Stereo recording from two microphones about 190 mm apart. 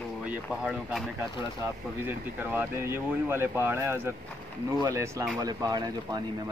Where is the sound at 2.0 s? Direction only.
10° right (ahead or behind).